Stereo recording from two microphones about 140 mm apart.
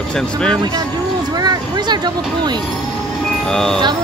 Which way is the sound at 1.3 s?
30° right (ahead or behind).